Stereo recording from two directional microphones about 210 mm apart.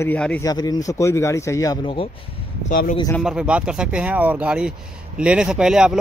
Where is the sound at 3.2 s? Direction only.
5° right (ahead or behind).